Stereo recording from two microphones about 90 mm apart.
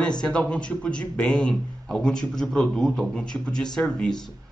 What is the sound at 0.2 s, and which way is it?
A man's voice, 10° left (ahead or behind).